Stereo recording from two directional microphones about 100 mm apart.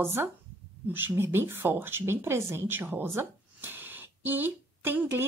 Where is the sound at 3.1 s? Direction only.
20° right (ahead or behind).